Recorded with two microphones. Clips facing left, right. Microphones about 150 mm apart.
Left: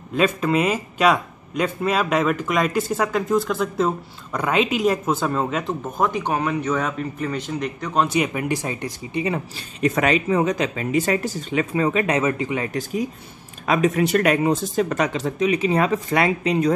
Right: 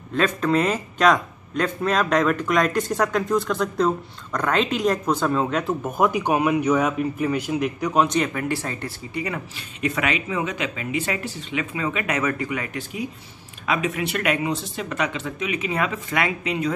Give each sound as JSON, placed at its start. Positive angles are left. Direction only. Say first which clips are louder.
{"t": 0.1, "sound": "a man's voice", "louder": "left 1 dB", "side_deg": 10}
{"t": 5.9, "sound": "speech", "louder": "right 2 dB", "side_deg": -10}
{"t": 8.1, "sound": "speech", "louder": "left 1 dB", "side_deg": 15}
{"t": 9.8, "sound": "speech", "louder": "left 5 dB", "side_deg": 40}
{"t": 13.7, "sound": "speech", "louder": "left 6 dB", "side_deg": 40}